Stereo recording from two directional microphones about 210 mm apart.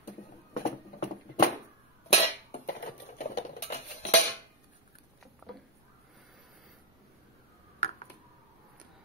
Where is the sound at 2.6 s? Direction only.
35° left (ahead or behind).